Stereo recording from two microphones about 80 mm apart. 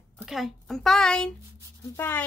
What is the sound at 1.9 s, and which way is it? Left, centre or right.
Speech, left.